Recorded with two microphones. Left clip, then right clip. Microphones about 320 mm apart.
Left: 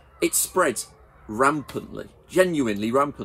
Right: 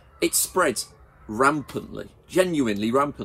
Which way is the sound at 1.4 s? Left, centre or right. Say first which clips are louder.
Even; centre.